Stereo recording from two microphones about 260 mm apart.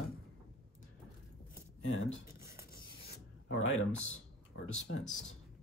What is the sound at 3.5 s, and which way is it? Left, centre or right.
Speech, left.